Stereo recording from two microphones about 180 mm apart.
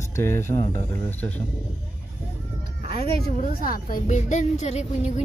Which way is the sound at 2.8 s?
55° left (ahead or behind).